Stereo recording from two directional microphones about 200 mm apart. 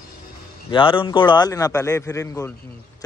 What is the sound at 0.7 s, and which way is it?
A man's voice, 25° left (ahead or behind).